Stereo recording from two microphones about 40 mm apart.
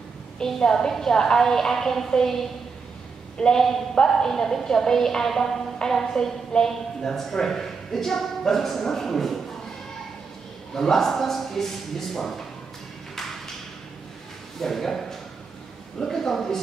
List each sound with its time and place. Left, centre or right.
0.4 s a man's voice: centre
4.1 s speech: centre
10.7 s speech: centre
14.6 s speech: centre